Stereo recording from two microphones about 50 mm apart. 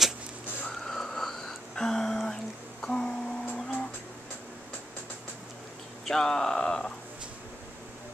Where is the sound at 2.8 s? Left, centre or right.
Centre.